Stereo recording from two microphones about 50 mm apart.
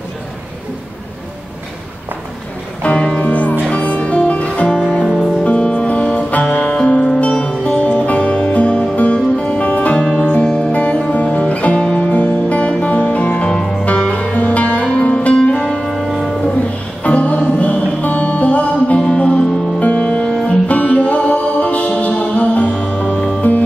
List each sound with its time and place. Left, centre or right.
2.8 s music: left
5.0 s music: centre
5.4 s music: left
7.8 s music: left
10.4 s music: centre
13.6 s music: centre
13.8 s music: left
15.9 s music: centre
17.0 s music: left